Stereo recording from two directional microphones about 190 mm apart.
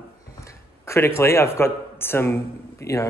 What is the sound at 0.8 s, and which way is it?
A man's voice, 15° left (ahead or behind).